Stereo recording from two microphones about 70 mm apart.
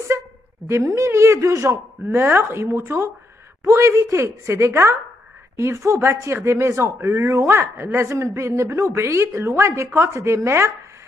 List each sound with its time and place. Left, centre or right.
0.7 s a woman's voice: right
7.4 s a woman's voice: right